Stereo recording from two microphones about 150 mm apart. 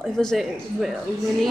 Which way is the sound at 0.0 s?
5° left (ahead or behind).